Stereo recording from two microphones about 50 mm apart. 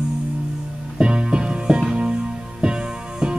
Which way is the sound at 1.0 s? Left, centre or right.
Centre.